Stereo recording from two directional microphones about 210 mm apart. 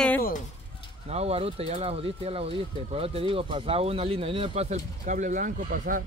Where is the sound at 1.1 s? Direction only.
30° right (ahead or behind).